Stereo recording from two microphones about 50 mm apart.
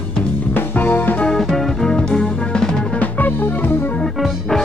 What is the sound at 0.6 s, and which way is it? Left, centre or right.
Music, left.